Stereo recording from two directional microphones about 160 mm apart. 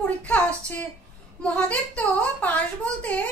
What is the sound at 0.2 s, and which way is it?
Speech, 10° left (ahead or behind).